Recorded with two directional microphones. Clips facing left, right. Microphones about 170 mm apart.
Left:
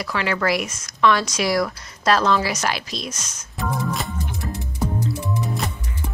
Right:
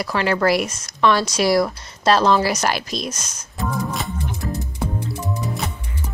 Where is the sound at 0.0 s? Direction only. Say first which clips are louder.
Right 4 dB; 40° right (ahead or behind).